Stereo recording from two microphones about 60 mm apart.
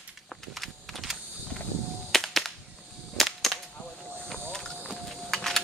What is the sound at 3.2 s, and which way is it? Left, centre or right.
Whip, centre.